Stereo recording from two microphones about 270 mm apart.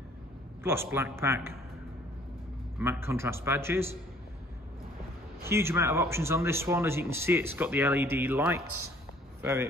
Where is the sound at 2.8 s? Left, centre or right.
Centre.